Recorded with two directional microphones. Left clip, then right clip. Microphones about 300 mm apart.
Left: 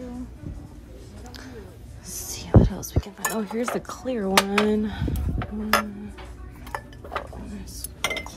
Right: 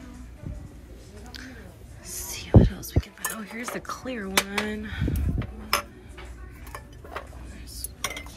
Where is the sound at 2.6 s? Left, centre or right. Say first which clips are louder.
Left 1 dB; left.